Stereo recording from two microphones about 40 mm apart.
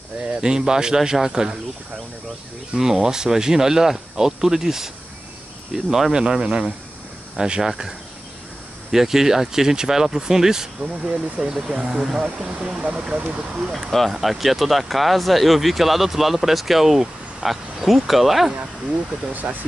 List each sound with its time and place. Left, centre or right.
0.4 s speech: centre
2.7 s speech: centre
8.9 s speech: centre; by 13.6 s right
13.7 s speech: centre
19.4 s speech: right